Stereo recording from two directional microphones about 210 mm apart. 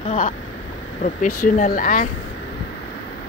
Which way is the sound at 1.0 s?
35° left (ahead or behind).